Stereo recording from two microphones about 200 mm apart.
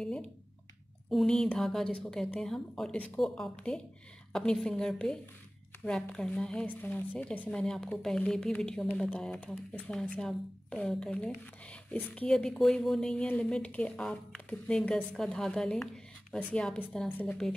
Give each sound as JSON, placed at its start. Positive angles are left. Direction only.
{"t": 1.1, "sound": "a woman's voice", "side_deg": 5}